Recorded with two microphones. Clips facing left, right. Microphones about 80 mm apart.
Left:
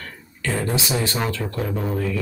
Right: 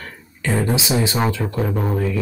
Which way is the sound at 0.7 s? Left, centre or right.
Centre.